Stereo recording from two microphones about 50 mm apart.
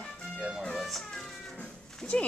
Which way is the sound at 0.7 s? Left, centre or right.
Centre.